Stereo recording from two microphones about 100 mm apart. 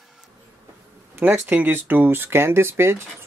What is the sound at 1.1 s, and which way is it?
Speech, 20° right (ahead or behind).